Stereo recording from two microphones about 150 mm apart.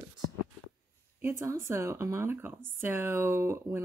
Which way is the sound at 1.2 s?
20° right (ahead or behind).